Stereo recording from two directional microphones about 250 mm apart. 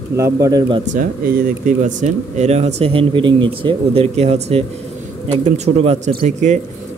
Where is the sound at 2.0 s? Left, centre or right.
Right.